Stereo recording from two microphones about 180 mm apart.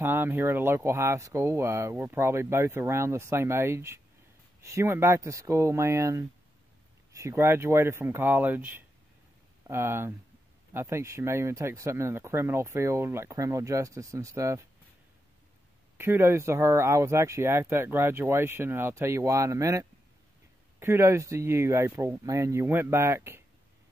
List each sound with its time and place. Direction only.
0.0 s speech: 10° right (ahead or behind)
16.0 s speech: 15° right (ahead or behind)